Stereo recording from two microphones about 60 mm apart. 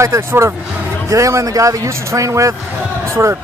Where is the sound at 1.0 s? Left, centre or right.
Right.